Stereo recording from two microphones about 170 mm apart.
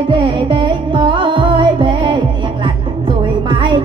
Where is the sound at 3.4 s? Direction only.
25° right (ahead or behind).